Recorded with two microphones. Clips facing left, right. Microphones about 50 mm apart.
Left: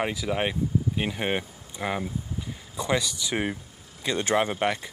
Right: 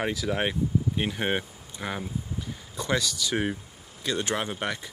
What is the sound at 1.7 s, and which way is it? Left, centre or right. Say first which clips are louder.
Speech: left 3 dB; centre.